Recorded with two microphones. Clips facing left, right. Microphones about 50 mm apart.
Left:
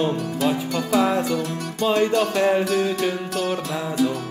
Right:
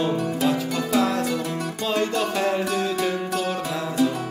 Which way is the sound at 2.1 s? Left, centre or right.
Centre.